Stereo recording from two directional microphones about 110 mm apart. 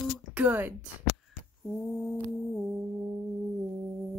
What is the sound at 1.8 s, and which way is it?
Mantra, 5° left (ahead or behind).